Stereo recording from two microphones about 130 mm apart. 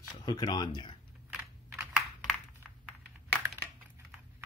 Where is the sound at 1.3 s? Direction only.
5° right (ahead or behind).